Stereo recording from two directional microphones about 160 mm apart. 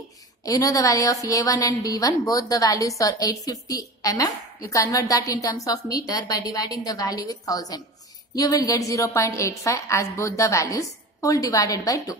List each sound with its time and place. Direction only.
0.5 s speech: 20° left (ahead or behind)